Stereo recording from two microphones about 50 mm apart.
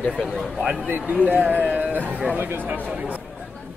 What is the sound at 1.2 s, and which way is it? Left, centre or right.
Speech, right.